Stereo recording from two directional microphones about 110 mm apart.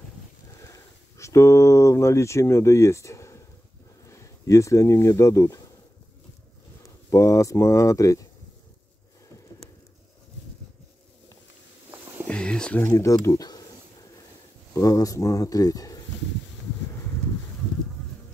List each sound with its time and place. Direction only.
1.1 s speech: 25° left (ahead or behind)
7.1 s speech: 25° left (ahead or behind)
12.3 s a sound: 10° left (ahead or behind)
12.8 s speech: 25° left (ahead or behind)
13.1 s speech: 35° left (ahead or behind)
14.7 s speech: 35° left (ahead or behind)